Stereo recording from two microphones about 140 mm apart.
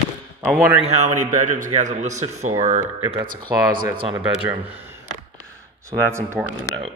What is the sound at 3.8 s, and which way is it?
Speech, 35° right (ahead or behind).